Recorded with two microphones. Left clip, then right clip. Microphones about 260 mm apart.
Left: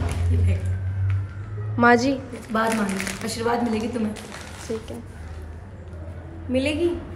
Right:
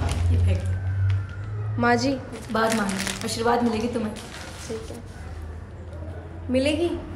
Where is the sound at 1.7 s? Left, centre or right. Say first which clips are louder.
Left 4 dB; centre.